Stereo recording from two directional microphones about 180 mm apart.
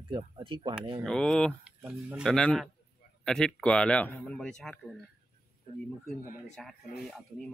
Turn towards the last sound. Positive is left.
turn(degrees=5)  # may be behind; listen again after turning